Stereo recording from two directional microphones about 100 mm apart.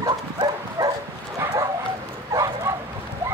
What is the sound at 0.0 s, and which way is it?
Dog, 45° right (ahead or behind).